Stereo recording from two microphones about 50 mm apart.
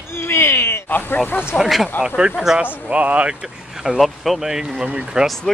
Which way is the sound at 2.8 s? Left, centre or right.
Right.